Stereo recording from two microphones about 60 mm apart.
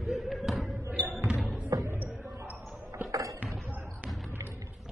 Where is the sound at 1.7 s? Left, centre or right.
Right.